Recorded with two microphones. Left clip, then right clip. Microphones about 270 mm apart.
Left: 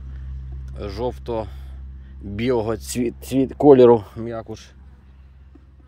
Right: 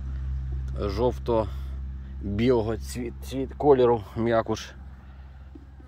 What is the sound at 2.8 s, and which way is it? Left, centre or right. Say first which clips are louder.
Speech: left 10 dB; left.